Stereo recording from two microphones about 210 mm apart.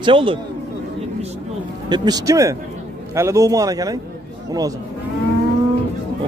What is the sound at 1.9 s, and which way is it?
Speech, 20° right (ahead or behind).